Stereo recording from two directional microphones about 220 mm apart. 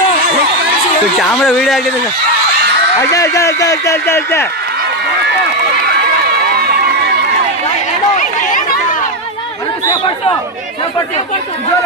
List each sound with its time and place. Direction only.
1.4 s speech: centre (ahead or behind)
3.0 s speech: 15° left (ahead or behind)
6.6 s run: 45° right (ahead or behind)